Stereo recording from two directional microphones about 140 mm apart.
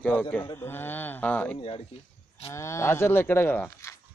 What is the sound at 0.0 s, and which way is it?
Speech, 10° left (ahead or behind).